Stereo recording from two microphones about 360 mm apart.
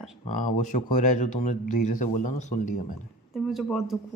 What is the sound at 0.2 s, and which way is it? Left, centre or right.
Speech, left.